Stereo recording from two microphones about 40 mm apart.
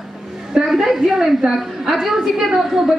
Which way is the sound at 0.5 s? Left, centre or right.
Centre.